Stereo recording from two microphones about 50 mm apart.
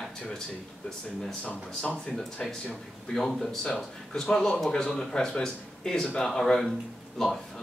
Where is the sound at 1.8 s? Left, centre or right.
Left.